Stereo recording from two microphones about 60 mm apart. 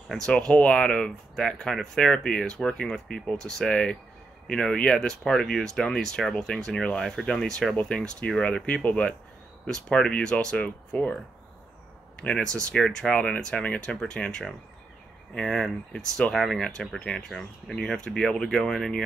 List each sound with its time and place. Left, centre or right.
0.1 s speech: centre
12.4 s speech: centre